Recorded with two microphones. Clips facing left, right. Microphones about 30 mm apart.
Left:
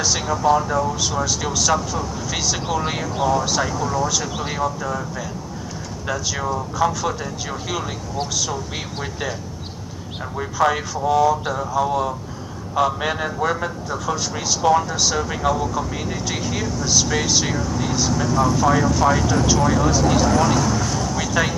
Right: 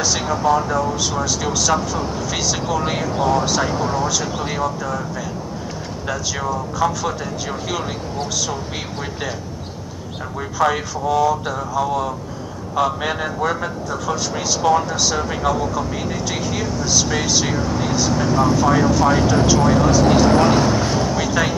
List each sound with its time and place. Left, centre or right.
0.2 s a man's voice: centre
3.2 s speech: right
4.1 s a man's voice: centre
6.0 s a man's voice: centre
10.6 s a man's voice: centre
17.6 s speech: right
18.6 s speech: centre
19.0 s speech: right
20.2 s speech: right
21.3 s speech: centre